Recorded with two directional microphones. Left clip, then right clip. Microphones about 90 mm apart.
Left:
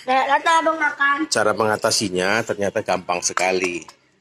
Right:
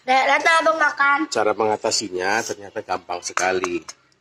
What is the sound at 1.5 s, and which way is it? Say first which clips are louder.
Cutlery: left 1 dB; 30° left (ahead or behind).